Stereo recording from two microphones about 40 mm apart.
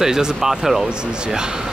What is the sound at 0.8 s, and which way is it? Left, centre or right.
Speech, centre.